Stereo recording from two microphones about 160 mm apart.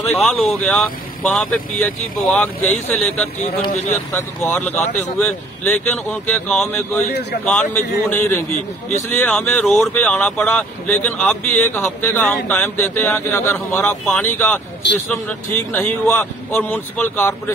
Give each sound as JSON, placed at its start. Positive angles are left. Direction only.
{"t": 0.1, "sound": "speech", "side_deg": 5}
{"t": 4.5, "sound": "speech", "side_deg": 10}